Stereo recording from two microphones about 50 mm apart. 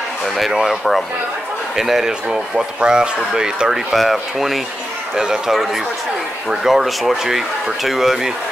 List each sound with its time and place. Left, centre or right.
0.5 s speech: centre
1.8 s speech: centre
3.9 s speech: centre
5.5 s speech: centre